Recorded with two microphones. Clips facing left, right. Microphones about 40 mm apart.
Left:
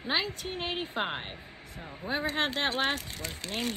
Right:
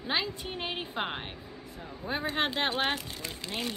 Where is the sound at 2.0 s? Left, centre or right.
Left.